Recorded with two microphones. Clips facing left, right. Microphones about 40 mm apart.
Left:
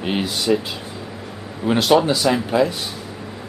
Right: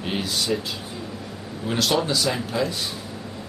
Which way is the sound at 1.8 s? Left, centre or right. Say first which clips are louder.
Left 6 dB; centre.